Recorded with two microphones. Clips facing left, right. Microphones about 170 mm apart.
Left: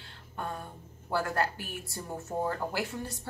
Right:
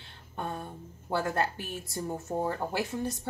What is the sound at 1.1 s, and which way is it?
A woman's voice, 20° right (ahead or behind).